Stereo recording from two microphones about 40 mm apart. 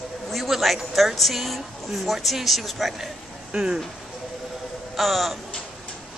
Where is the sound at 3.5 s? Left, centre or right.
Right.